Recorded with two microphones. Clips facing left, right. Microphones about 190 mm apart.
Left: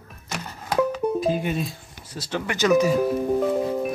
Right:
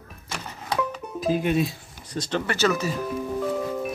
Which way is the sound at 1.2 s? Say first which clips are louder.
Right 1 dB; centre (ahead or behind).